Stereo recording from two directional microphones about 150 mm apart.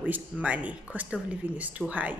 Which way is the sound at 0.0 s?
10° right (ahead or behind).